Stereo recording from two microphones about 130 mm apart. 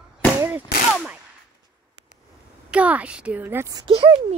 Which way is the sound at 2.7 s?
10° right (ahead or behind).